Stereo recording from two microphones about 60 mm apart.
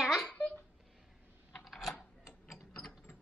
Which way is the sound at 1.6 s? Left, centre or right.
Centre.